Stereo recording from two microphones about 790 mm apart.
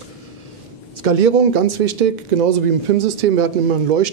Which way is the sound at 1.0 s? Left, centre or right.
Right.